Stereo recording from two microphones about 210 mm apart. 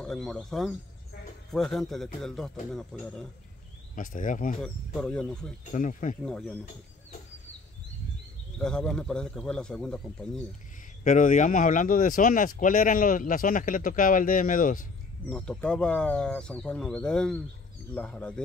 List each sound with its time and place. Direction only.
0.0 s speech: centre (ahead or behind)
3.9 s speech: 40° left (ahead or behind)
4.6 s speech: centre (ahead or behind)
5.7 s speech: 35° left (ahead or behind)
6.2 s speech: 5° left (ahead or behind)
8.5 s speech: 5° left (ahead or behind)
11.1 s speech: 35° left (ahead or behind)
15.2 s speech: 5° left (ahead or behind)